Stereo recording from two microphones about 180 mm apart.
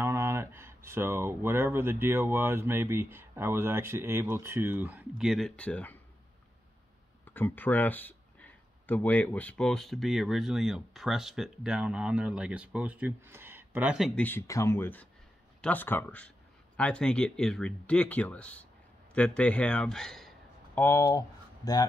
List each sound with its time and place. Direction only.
0.0 s speech: 15° right (ahead or behind); by 5.9 s 5° left (ahead or behind)
7.3 s speech: 10° left (ahead or behind)
14.2 s a man's voice: 15° left (ahead or behind)
20.8 s speech: 15° left (ahead or behind)